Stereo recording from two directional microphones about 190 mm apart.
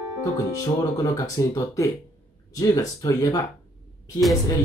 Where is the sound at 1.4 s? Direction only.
20° left (ahead or behind).